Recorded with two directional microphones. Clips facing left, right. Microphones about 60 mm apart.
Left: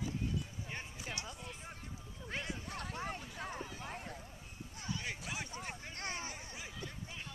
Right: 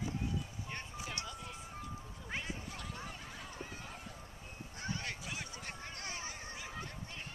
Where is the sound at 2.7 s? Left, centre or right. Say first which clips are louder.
Left 4 dB; left.